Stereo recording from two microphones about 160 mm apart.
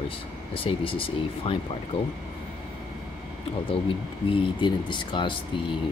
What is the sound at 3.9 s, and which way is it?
Speech, 35° left (ahead or behind).